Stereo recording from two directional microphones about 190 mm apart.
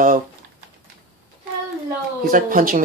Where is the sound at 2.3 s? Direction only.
45° right (ahead or behind).